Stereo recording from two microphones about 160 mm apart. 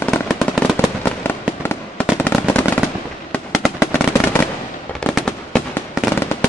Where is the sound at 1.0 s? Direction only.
15° left (ahead or behind).